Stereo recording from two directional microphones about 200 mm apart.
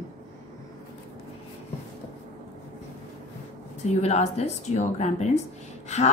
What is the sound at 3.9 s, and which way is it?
A woman's voice, 30° left (ahead or behind).